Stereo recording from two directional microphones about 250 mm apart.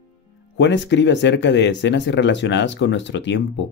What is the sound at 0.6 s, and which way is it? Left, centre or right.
Speech, left.